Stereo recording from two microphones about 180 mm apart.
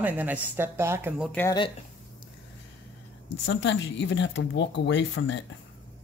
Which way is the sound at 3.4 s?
90° left.